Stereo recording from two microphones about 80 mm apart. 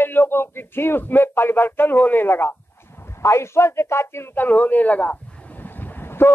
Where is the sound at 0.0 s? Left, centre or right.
Left.